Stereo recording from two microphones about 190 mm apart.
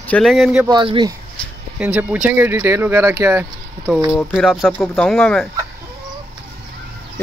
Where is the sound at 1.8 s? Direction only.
10° right (ahead or behind).